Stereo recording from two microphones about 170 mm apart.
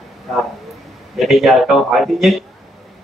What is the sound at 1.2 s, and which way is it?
Speech, centre (ahead or behind).